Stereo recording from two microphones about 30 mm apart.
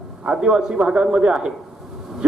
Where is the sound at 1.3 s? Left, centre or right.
Centre.